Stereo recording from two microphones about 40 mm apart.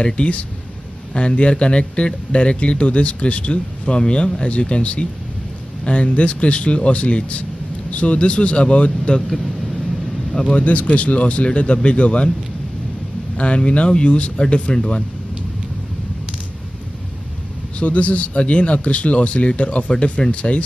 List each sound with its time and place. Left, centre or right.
0.0 s a man's voice: left
10.5 s speech: left
13.4 s a man's voice: left
17.7 s a man's voice: left